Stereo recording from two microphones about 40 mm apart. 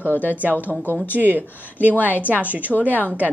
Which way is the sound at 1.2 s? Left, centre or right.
Right.